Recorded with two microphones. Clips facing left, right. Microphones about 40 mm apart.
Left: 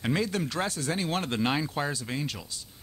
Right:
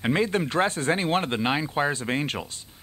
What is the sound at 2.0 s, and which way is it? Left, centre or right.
Speech, right.